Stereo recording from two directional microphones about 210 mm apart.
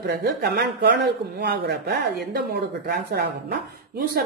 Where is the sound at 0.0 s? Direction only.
50° right (ahead or behind).